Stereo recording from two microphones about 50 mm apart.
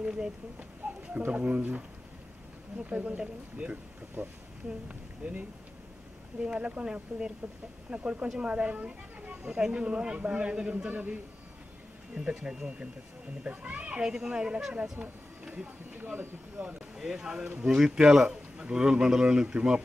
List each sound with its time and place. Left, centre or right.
0.0 s speech: centre
1.3 s speech: right
4.2 s speech: right
4.8 s speech: right
6.4 s speech: right
10.9 s speech: right
12.2 s speech: centre
14.7 s speech: right
16.5 s speech: centre